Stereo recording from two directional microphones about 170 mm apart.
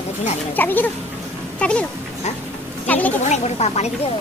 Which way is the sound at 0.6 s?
10° left (ahead or behind).